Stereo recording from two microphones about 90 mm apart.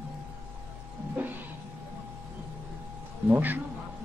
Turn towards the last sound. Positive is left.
turn(degrees=-20)  # may be behind; listen again after turning